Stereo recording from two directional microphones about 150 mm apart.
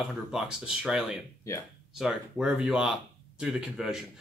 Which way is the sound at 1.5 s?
20° left (ahead or behind).